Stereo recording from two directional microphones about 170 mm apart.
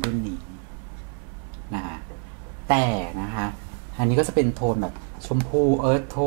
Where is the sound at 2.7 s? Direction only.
10° right (ahead or behind).